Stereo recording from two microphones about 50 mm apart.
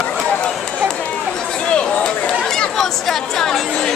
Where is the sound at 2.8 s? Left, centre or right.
Centre.